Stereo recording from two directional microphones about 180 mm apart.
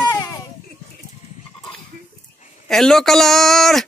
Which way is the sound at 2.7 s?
Centre (ahead or behind).